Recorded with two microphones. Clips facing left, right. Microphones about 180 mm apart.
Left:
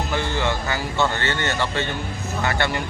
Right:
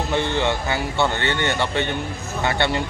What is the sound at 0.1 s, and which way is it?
Speech, 20° right (ahead or behind).